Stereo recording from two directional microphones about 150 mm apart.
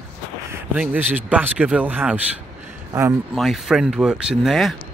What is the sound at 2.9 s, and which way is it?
Speech, 20° right (ahead or behind).